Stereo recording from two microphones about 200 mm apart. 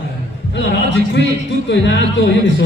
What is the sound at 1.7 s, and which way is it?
Speech, 60° left (ahead or behind).